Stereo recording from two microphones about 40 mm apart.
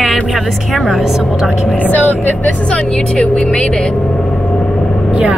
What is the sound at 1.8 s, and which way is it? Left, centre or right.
Speech, left.